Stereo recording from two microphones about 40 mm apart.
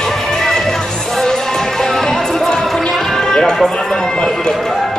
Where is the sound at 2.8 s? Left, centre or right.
Centre.